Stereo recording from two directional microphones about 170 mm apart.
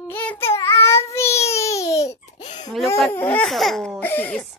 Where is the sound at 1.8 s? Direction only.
40° left (ahead or behind).